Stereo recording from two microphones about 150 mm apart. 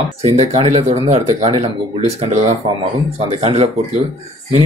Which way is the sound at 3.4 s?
45° right (ahead or behind).